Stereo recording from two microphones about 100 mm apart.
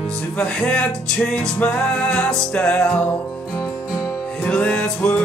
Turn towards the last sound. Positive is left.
turn(degrees=15)  # may be behind; listen again after turning